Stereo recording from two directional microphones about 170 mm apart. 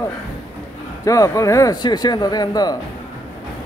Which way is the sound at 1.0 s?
20° left (ahead or behind).